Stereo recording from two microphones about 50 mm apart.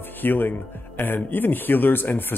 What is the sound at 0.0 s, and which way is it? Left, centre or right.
Speech, left.